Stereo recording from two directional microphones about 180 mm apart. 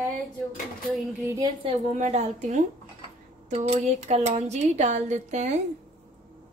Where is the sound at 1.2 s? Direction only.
20° right (ahead or behind).